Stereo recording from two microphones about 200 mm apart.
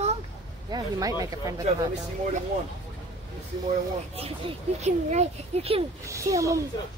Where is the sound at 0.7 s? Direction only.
20° right (ahead or behind).